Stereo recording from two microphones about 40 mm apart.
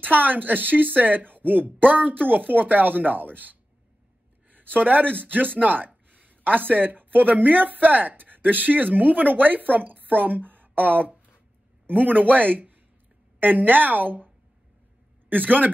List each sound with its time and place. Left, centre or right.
0.0 s speech: right
15.2 s speech: right